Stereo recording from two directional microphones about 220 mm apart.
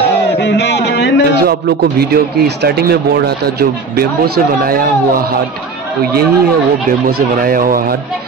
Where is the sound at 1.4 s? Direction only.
45° right (ahead or behind).